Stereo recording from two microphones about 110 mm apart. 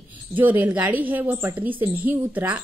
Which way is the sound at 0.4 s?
15° right (ahead or behind).